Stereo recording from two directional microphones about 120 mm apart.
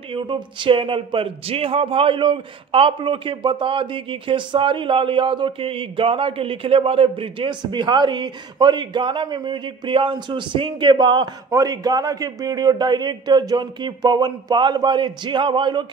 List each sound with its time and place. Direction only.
0.1 s a man's voice: 45° right (ahead or behind)